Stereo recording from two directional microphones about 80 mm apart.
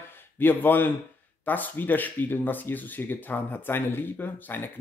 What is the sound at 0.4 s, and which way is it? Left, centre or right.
Speech, left.